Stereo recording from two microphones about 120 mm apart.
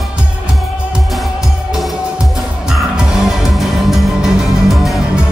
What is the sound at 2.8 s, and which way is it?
Music, 5° right (ahead or behind).